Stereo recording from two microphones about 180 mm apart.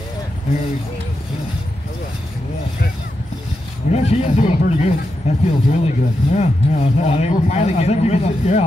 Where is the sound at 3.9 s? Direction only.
35° left (ahead or behind).